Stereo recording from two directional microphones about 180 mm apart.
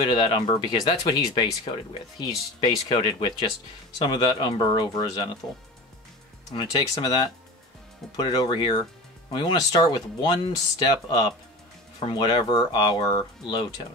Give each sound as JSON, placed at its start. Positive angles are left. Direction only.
{"t": 0.0, "sound": "speech", "side_deg": 25}
{"t": 6.5, "sound": "speech", "side_deg": 25}